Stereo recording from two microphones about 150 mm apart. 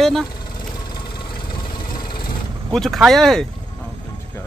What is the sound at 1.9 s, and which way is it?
Vehicle, 30° left (ahead or behind).